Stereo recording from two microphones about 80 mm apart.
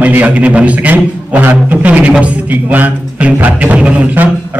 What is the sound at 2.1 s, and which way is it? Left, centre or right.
Music, centre.